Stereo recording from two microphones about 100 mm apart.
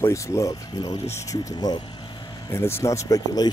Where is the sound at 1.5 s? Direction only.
45° left (ahead or behind).